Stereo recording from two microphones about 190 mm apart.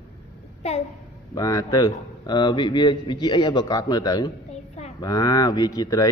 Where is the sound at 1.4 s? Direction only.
20° left (ahead or behind).